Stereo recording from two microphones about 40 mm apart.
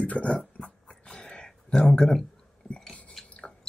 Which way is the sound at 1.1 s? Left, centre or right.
Centre.